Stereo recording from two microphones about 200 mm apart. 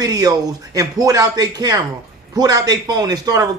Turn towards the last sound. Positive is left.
turn(degrees=-20)  # may be behind; listen again after turning